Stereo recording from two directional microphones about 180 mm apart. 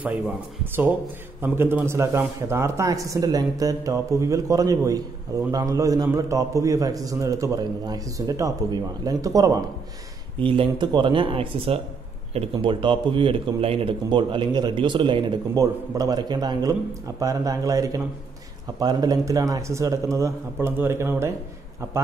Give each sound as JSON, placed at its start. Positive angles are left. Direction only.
{"t": 1.4, "sound": "a man's voice", "side_deg": -10}